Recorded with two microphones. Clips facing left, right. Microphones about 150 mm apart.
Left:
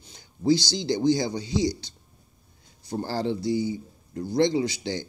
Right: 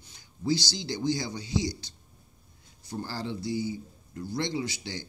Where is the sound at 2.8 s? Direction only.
30° left (ahead or behind).